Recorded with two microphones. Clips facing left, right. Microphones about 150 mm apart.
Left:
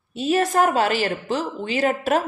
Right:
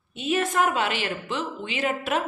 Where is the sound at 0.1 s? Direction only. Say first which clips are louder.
Left 5 dB; 40° left (ahead or behind).